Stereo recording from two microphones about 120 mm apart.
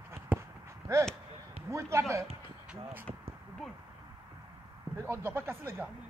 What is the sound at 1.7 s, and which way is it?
Speech, 25° right (ahead or behind).